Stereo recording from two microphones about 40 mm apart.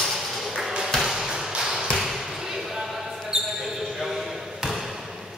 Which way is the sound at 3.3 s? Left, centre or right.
Centre.